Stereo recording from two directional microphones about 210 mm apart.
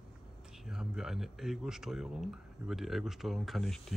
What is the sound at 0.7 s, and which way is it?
Speech, centre (ahead or behind).